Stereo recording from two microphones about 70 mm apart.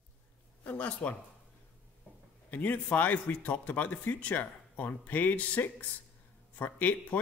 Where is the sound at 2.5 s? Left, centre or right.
Left.